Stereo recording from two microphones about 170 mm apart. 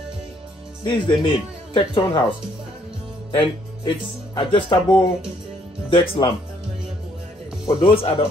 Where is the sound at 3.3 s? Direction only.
30° left (ahead or behind).